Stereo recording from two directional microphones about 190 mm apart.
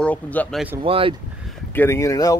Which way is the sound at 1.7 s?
15° left (ahead or behind).